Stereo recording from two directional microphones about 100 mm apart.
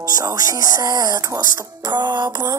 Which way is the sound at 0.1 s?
35° right (ahead or behind).